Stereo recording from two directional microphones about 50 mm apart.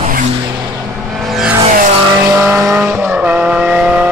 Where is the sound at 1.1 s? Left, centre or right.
Centre.